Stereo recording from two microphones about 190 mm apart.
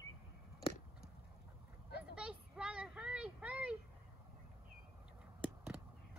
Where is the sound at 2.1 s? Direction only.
5° right (ahead or behind).